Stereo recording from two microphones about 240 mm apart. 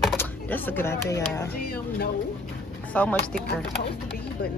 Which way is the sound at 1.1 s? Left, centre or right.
Centre.